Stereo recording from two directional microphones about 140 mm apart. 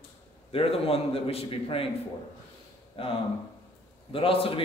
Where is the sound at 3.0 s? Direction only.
40° left (ahead or behind).